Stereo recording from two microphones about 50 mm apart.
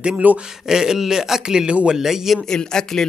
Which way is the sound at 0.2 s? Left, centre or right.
Right.